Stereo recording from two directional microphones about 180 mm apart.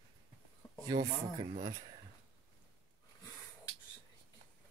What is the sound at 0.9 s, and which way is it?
Speech, 30° right (ahead or behind).